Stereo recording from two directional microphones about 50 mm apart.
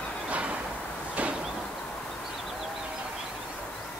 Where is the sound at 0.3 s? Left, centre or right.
Right.